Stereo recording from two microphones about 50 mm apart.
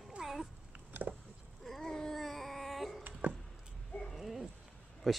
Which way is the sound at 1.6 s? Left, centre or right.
Centre.